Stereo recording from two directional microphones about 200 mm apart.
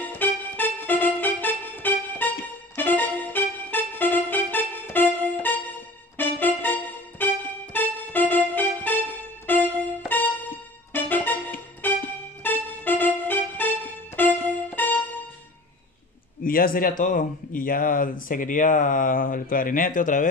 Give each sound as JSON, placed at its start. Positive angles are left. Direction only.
{"t": 0.0, "sound": "music", "side_deg": 10}
{"t": 16.4, "sound": "speech", "side_deg": 45}